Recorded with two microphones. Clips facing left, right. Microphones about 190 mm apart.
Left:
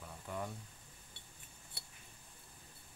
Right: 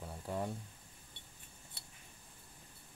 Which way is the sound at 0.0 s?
30° right (ahead or behind).